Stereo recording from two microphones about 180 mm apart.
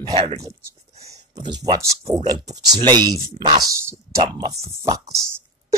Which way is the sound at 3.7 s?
15° right (ahead or behind).